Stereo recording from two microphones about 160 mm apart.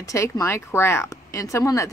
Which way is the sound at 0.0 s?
20° left (ahead or behind).